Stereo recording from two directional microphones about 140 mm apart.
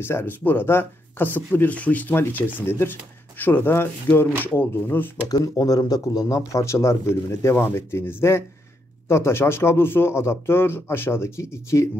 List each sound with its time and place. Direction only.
0.0 s speech: 15° left (ahead or behind)
5.3 s speech: 25° left (ahead or behind)